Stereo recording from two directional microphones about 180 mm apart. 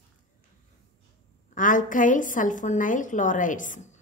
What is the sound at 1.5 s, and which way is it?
Speech, 45° left (ahead or behind).